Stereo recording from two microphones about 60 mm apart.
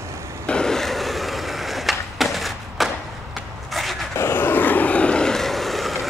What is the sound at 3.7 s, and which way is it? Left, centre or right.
Vehicle, centre.